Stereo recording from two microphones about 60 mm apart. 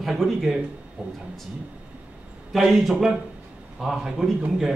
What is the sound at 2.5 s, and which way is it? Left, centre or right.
Speech, centre.